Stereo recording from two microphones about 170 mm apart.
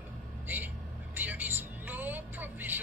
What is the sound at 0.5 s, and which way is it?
Vehicle, 10° right (ahead or behind).